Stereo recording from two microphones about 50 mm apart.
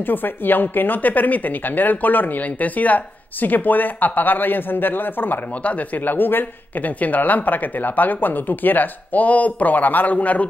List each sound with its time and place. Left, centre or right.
0.0 s a woman's voice: left
5.6 s a woman's voice: left